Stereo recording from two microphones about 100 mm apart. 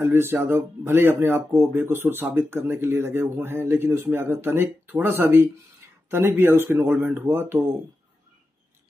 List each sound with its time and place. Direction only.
0.0 s speech: 25° right (ahead or behind)